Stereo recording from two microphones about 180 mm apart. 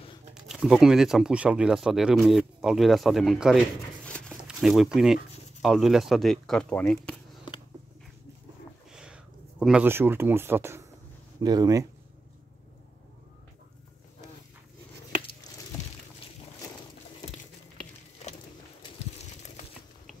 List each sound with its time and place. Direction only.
0.3 s speech: centre (ahead or behind)
4.0 s a sound: 5° left (ahead or behind)
4.5 s speech: centre (ahead or behind)
8.9 s speech: 5° right (ahead or behind); by 11.8 s 20° right (ahead or behind)